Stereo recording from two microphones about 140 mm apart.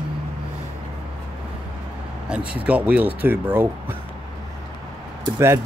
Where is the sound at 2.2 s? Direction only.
10° right (ahead or behind).